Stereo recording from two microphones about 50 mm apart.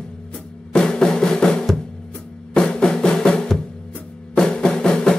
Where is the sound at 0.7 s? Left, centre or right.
Centre.